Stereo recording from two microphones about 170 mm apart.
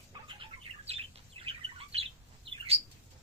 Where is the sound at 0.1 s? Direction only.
30° right (ahead or behind).